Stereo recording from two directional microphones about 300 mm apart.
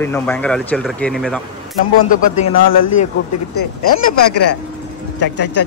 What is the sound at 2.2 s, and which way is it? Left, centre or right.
Speech, left.